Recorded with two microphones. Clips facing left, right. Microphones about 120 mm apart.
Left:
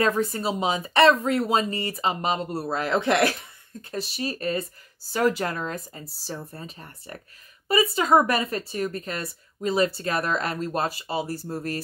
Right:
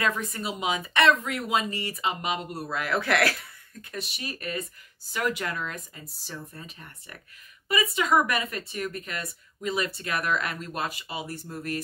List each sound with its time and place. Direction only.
0.0 s speech: 35° left (ahead or behind)
3.9 s speech: 35° left (ahead or behind)